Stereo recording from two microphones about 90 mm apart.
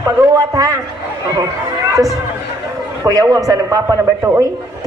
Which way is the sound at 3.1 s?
40° right (ahead or behind).